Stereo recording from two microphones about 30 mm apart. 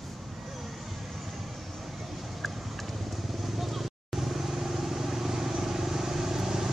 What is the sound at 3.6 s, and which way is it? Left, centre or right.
Vehicle, centre.